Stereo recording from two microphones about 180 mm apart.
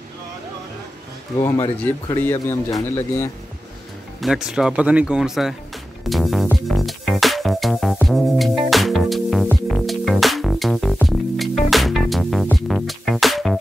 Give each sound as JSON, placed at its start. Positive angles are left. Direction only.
{"t": 1.4, "sound": "speech", "side_deg": 15}
{"t": 4.2, "sound": "speech", "side_deg": -5}
{"t": 6.4, "sound": "music", "side_deg": 0}